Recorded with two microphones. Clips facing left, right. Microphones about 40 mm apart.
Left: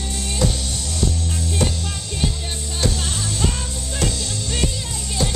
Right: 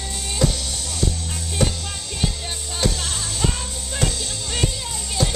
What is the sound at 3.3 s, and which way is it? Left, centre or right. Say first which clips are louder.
Music: left 1 dB; right.